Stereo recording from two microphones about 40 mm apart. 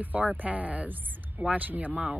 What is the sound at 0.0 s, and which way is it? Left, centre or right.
Speech, right.